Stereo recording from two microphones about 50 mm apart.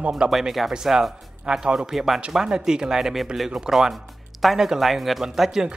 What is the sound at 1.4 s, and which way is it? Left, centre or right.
Speech, centre.